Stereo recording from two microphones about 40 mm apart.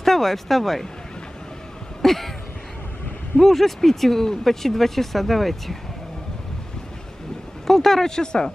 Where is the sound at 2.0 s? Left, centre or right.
Centre.